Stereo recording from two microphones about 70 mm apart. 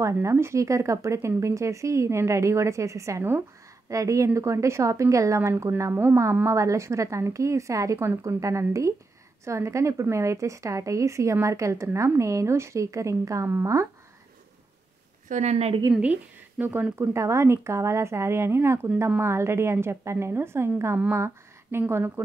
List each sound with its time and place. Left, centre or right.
0.0 s speech: right
15.9 s speech: right
17.0 s a woman's voice: right